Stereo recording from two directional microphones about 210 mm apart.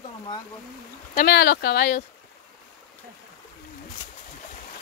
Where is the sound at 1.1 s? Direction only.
50° left (ahead or behind).